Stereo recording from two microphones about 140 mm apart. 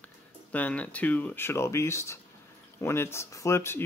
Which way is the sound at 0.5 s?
10° left (ahead or behind).